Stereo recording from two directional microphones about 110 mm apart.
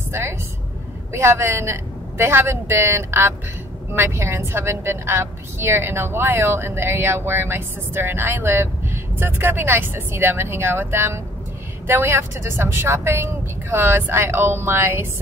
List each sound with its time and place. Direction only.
0.1 s a woman's voice: 25° right (ahead or behind)